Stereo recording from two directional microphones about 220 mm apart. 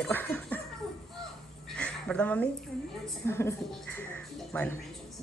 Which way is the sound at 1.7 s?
5° left (ahead or behind).